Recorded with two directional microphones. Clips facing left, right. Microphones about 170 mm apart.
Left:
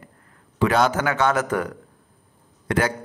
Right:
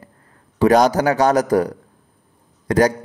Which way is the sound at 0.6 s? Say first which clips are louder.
Right 6 dB; 40° right (ahead or behind).